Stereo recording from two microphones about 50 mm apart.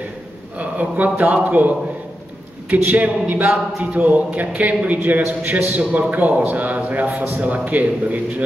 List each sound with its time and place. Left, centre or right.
0.6 s a man's voice: right